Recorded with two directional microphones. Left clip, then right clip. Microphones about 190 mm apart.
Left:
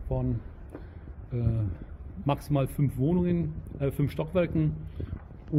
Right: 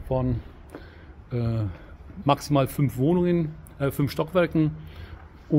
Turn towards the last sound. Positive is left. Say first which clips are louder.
# right 6 dB
turn(degrees=-40)  # may be behind; listen again after turning